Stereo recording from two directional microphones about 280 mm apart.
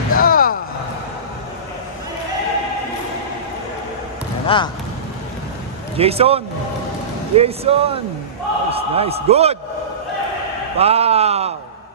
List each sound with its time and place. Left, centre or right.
0.1 s a sound: left
4.5 s speech: centre
5.9 s a man's voice: right
10.8 s a man's voice: right